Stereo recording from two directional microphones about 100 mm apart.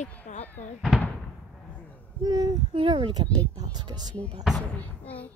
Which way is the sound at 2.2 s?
40° right (ahead or behind).